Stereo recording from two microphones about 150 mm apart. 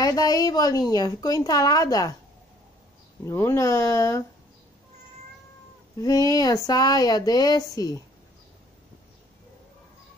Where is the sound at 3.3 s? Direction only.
20° left (ahead or behind).